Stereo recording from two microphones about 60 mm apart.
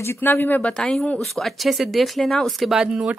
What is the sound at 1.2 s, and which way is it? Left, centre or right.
Speech, centre.